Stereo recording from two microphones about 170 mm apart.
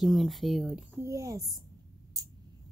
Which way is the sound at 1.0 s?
15° right (ahead or behind).